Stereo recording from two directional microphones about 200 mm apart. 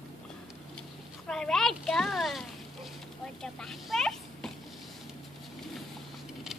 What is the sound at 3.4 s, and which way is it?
Vehicle, centre (ahead or behind).